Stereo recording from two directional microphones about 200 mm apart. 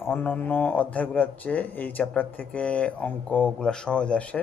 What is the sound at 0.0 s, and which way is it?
Speech, 10° left (ahead or behind).